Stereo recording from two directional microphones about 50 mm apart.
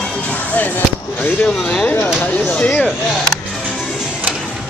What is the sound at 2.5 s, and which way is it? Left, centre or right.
Speech, left.